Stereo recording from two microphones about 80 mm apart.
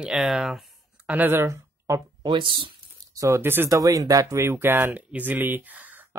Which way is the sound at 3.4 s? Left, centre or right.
Right.